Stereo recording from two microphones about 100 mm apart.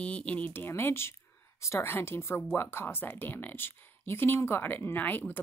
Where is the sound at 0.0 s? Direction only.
10° left (ahead or behind).